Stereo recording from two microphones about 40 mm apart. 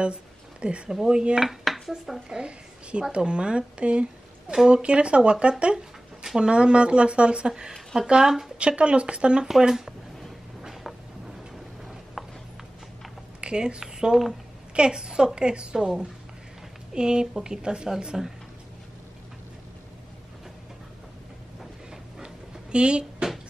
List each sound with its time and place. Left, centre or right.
0.0 s a sound: right
0.8 s speech: centre
1.4 s dishes: centre
1.9 s speech: centre
2.2 s a woman's voice: right
5.8 s a sound: centre
6.5 s speech: right
8.5 s speech: right
9.5 s speech: centre
10.6 s a sound: centre
13.4 s speech: right
16.9 s speech: right
22.2 s a sound: right